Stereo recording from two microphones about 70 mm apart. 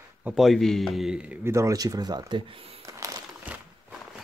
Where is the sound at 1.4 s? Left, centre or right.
Right.